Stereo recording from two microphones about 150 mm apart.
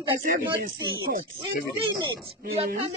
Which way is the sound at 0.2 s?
60° right (ahead or behind).